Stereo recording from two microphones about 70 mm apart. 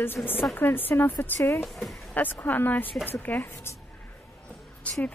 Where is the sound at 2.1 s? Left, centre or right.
Left.